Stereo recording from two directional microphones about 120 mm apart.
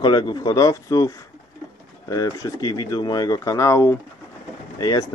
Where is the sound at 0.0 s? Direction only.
35° left (ahead or behind).